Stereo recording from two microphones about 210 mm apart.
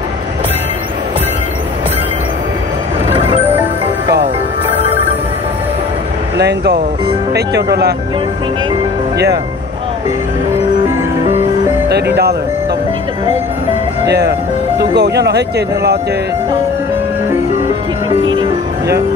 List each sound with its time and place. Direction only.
4.7 s music: 30° right (ahead or behind)
6.3 s a sound: 50° right (ahead or behind)
7.3 s speech: 50° right (ahead or behind)
14.0 s speech: 55° right (ahead or behind)